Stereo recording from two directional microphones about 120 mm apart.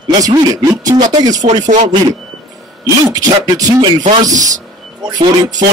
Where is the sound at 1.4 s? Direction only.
85° right.